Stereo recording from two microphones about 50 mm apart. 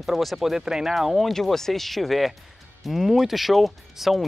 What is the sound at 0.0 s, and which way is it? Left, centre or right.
Speech, centre.